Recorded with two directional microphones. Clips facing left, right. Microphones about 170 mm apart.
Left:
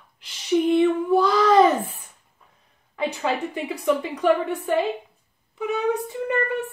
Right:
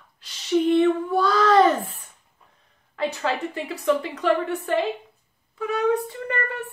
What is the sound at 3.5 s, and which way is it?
A woman's voice, 10° left (ahead or behind).